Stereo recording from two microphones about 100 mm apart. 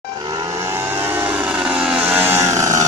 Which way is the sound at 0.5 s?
30° right (ahead or behind).